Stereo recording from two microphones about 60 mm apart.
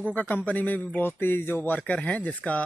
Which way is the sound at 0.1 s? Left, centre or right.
Left.